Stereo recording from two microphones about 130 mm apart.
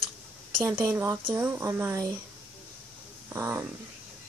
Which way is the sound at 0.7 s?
15° right (ahead or behind).